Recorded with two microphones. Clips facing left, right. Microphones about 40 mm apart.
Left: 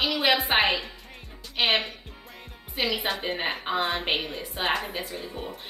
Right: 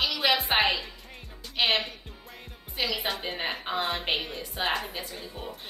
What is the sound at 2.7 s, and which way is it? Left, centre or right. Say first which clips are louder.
A woman's voice: left 3 dB; centre.